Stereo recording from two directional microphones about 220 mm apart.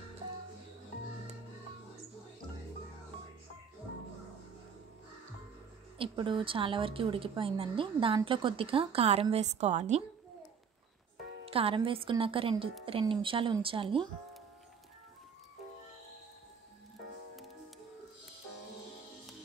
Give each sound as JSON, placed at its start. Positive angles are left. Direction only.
{"t": 5.9, "sound": "a woman's voice", "side_deg": -20}
{"t": 11.4, "sound": "a woman's voice", "side_deg": -25}